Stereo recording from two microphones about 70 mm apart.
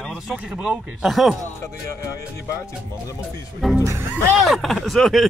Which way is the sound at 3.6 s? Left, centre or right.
Centre.